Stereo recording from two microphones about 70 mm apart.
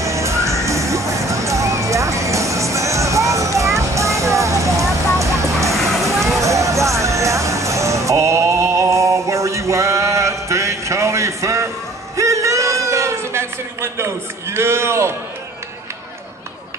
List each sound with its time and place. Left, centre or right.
0.0 s music: right
6.1 s vehicle: centre
6.4 s music: right
12.2 s a sound: right